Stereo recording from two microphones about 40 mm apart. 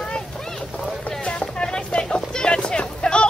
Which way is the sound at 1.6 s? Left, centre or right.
Left.